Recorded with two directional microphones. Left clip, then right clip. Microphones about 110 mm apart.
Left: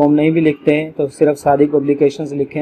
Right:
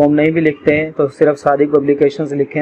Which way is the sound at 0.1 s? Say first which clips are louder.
Even; 10° left (ahead or behind).